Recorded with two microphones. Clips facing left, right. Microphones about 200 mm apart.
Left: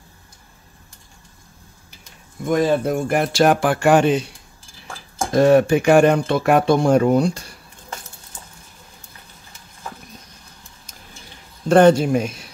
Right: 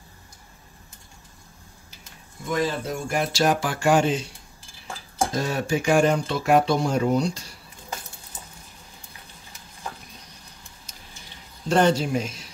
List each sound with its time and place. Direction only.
2.4 s speech: 50° left (ahead or behind)
5.3 s speech: 60° left (ahead or behind)
11.7 s speech: 55° left (ahead or behind)